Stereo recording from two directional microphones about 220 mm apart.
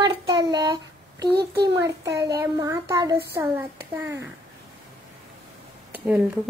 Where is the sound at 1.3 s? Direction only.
50° right (ahead or behind).